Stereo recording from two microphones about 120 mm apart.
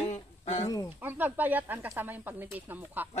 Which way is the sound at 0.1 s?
65° left (ahead or behind).